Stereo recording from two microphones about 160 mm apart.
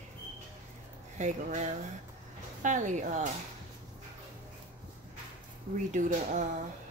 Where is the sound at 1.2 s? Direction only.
50° right (ahead or behind).